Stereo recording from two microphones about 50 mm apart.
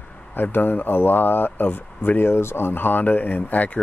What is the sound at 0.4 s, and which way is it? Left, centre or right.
Speech, left.